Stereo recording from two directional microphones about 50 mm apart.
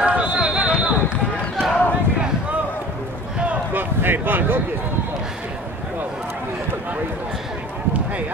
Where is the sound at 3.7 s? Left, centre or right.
Right.